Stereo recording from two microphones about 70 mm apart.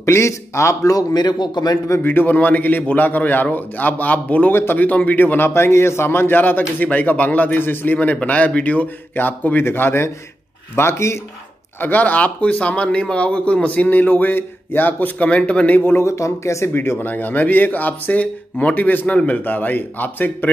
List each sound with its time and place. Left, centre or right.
0.0 s speech: left
0.9 s speech: left
2.0 s a man's voice: left
4.5 s a man's voice: left
5.5 s a man's voice: left
11.8 s a man's voice: left
16.1 s a man's voice: left